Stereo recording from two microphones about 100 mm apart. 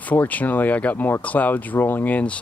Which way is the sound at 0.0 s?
15° left (ahead or behind).